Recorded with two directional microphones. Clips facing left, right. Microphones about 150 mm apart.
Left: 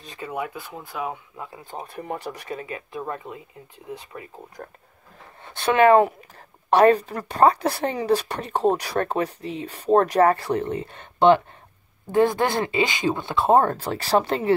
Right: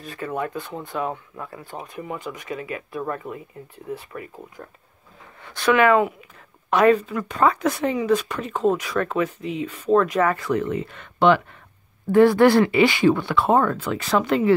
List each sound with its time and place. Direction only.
0.0 s speech: 15° left (ahead or behind)
2.0 s speech: 40° left (ahead or behind); by 4.3 s 20° left (ahead or behind)
5.4 s speech: 25° left (ahead or behind)